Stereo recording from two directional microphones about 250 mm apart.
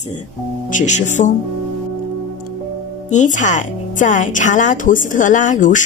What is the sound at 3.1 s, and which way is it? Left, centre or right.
A woman's voice, left.